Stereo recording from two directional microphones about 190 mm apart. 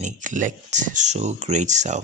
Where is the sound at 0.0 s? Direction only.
40° right (ahead or behind).